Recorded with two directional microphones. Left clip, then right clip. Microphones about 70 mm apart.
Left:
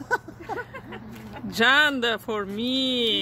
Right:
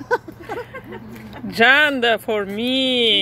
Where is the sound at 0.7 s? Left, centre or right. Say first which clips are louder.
Right 5 dB; centre.